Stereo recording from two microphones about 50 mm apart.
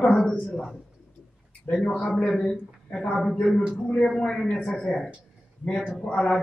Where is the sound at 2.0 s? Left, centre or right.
Centre.